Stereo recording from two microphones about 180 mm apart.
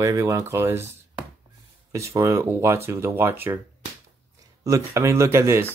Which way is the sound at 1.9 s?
15° right (ahead or behind).